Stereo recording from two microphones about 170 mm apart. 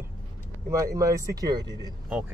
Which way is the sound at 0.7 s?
20° right (ahead or behind).